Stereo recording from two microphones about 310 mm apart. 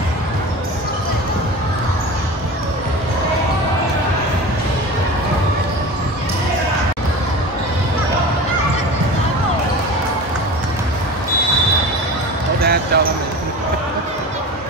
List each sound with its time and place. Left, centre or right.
12.5 s basketball bounce: right